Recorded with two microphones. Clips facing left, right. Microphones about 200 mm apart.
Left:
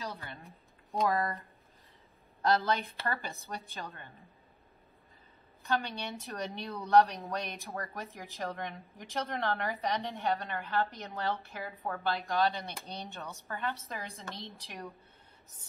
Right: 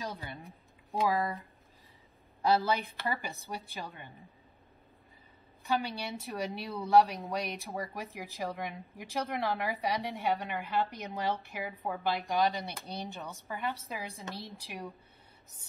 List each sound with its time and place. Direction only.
0.0 s a sound: 15° right (ahead or behind)
0.5 s speech: centre (ahead or behind)
5.7 s speech: 5° right (ahead or behind)
7.5 s speech: 15° right (ahead or behind)